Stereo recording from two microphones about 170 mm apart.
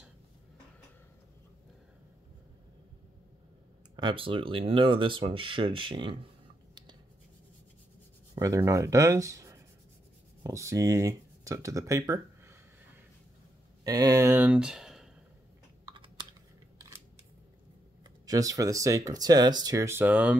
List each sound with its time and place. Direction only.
3.9 s speech: 30° right (ahead or behind)
8.4 s speech: 20° right (ahead or behind); by 15.0 s centre (ahead or behind)
18.2 s speech: 20° right (ahead or behind)